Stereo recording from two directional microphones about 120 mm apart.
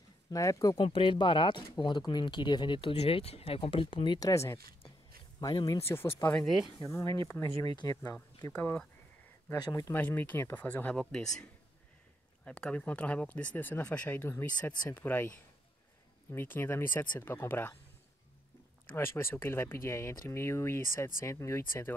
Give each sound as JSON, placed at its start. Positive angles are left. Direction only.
{"t": 0.3, "sound": "speech", "side_deg": 30}
{"t": 0.7, "sound": "speech", "side_deg": 45}
{"t": 4.3, "sound": "speech", "side_deg": 25}
{"t": 5.5, "sound": "speech", "side_deg": 45}
{"t": 6.3, "sound": "speech", "side_deg": 0}
{"t": 7.2, "sound": "speech", "side_deg": 25}
{"t": 8.5, "sound": "speech", "side_deg": 10}
{"t": 9.7, "sound": "speech", "side_deg": 30}
{"t": 9.9, "sound": "speech", "side_deg": 15}
{"t": 12.4, "sound": "speech", "side_deg": 10}
{"t": 18.9, "sound": "speech", "side_deg": 20}